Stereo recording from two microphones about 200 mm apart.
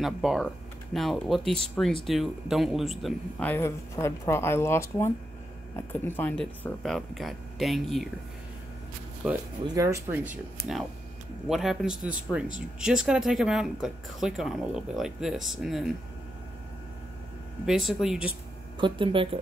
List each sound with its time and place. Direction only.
0.0 s speech: centre (ahead or behind)
9.2 s speech: 5° right (ahead or behind)
9.8 s speech: 15° right (ahead or behind)
11.4 s speech: centre (ahead or behind)
17.6 s speech: centre (ahead or behind)
18.8 s speech: 25° right (ahead or behind)